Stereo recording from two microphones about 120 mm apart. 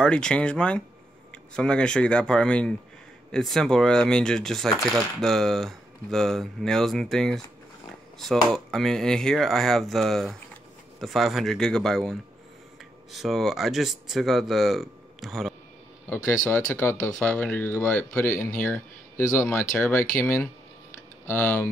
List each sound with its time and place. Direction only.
0.0 s speech: 10° left (ahead or behind)
16.1 s speech: 15° left (ahead or behind)